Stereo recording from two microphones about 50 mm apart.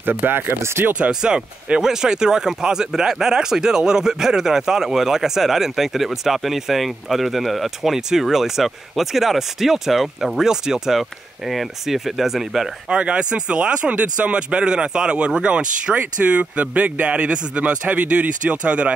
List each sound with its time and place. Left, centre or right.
0.0 s speech: right
0.6 s speech: right
0.9 s speech: right
11.0 s speech: centre
12.9 s speech: right